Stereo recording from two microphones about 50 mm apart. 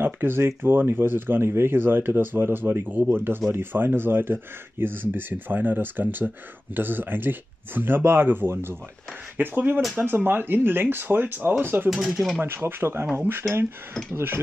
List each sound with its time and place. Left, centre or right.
0.0 s speech: right
9.4 s speech: right
11.9 s speech: centre
12.4 s speech: right